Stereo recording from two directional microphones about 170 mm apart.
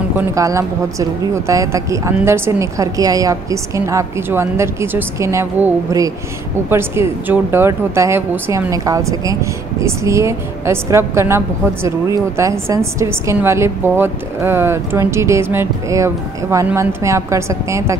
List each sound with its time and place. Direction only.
0.4 s a woman's voice: 20° right (ahead or behind)